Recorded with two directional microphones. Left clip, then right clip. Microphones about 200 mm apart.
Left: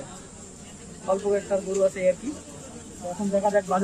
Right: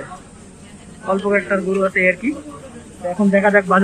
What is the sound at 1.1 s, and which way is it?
Speech, 20° left (ahead or behind).